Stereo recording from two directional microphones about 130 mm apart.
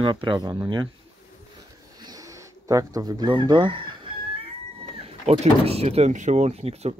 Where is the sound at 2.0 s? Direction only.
30° right (ahead or behind).